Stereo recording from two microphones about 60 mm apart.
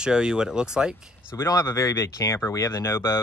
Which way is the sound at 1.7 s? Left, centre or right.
Left.